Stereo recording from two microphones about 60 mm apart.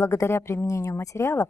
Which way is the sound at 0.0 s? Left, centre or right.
Left.